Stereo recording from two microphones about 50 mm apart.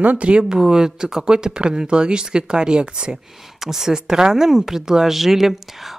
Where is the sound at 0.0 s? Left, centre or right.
Right.